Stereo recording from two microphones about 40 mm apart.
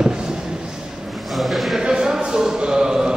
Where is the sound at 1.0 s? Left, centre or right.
Centre.